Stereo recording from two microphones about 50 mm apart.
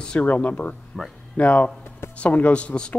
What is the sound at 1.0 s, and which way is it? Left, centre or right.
Speech, centre.